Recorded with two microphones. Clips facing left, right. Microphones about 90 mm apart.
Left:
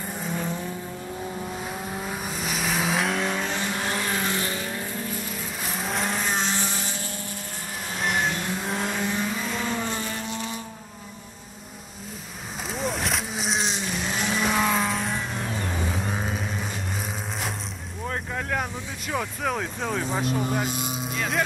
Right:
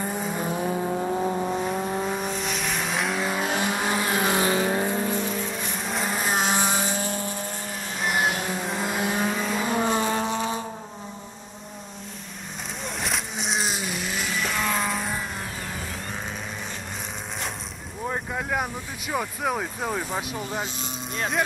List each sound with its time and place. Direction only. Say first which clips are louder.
0.4 s vehicle: right 4 dB; 15° right (ahead or behind)
0.7 s vehicle: right 9 dB; 45° right (ahead or behind)
2.0 s vehicle: right 3 dB; 5° left (ahead or behind)
4.5 s vehicle: right 8 dB; 50° right (ahead or behind); by 5.3 s 30° right (ahead or behind)
5.3 s vehicle: right 3 dB; centre (ahead or behind)
8.0 s vehicle: right 1 dB; 5° right (ahead or behind)
9.9 s vehicle: right 7 dB; 50° right (ahead or behind)
12.8 s vehicle: left 2 dB; centre (ahead or behind)
14.4 s vehicle: left 3 dB; 5° left (ahead or behind)
18.0 s speech: right 1 dB; 10° right (ahead or behind)
20.8 s vehicle: left 3 dB; 5° left (ahead or behind)